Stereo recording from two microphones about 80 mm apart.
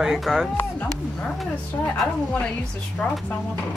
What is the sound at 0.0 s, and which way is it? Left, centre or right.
Speech, centre.